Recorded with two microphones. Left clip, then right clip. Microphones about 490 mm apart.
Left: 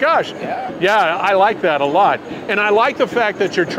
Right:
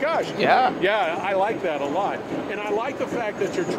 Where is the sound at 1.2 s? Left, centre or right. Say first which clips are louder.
Left 9 dB; left.